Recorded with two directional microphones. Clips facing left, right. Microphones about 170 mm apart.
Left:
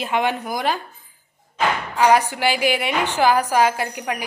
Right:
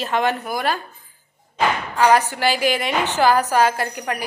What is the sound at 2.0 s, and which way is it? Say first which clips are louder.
A woman's voice: even; 10° left (ahead or behind).